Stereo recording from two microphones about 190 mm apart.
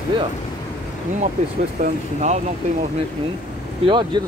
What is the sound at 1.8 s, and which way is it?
Speech, 40° right (ahead or behind).